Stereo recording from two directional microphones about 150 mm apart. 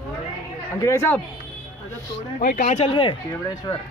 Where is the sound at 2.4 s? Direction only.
75° left (ahead or behind).